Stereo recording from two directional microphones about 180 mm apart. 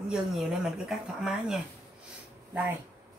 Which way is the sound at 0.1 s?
5° right (ahead or behind).